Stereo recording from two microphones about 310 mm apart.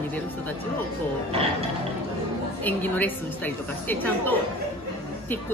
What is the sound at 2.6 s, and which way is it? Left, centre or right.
A woman's voice, centre.